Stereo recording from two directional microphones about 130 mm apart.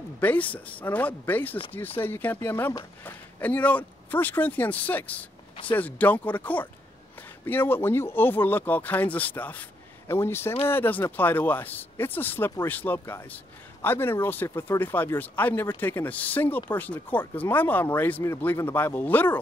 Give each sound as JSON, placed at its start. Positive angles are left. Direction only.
{"t": 0.2, "sound": "speech", "side_deg": 10}